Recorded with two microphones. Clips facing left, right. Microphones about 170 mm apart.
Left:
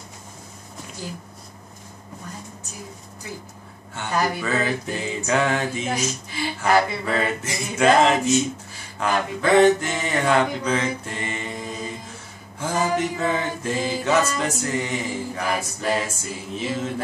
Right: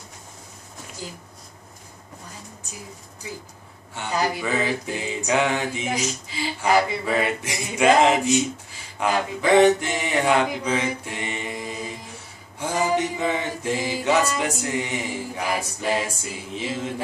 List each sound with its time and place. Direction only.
3.9 s mantra: 15° right (ahead or behind)